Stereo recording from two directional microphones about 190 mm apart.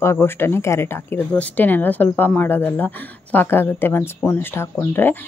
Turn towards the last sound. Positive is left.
turn(degrees=10)  # may be behind; listen again after turning